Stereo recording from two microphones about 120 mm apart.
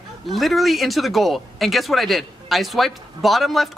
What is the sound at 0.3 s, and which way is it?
Speech, centre (ahead or behind).